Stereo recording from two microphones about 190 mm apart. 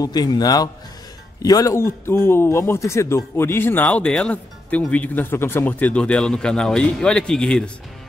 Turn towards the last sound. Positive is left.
turn(degrees=5)  # may be behind; listen again after turning